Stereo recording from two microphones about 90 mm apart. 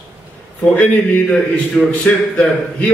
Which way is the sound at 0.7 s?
15° left (ahead or behind).